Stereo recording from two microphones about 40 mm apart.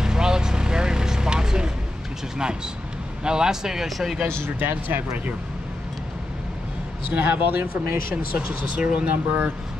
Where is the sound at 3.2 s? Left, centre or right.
Centre.